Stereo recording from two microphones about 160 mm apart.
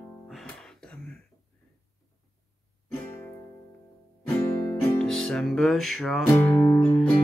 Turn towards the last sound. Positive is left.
turn(degrees=10)  # may be behind; listen again after turning